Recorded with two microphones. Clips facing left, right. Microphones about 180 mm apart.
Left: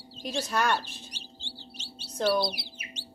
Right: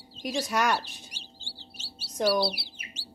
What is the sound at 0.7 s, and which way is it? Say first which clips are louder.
Bird: even; 10° right (ahead or behind).